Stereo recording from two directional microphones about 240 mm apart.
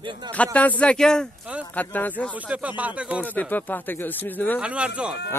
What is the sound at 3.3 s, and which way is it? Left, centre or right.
Speech, centre.